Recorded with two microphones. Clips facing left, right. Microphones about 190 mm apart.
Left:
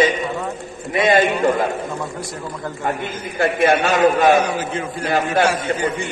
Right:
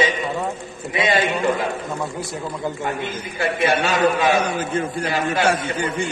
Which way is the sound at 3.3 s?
50° left (ahead or behind).